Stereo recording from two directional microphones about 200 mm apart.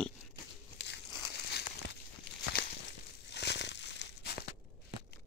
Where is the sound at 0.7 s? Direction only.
60° left (ahead or behind).